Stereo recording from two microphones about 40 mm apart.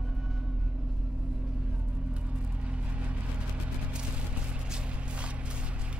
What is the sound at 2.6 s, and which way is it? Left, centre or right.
Vehicle, right.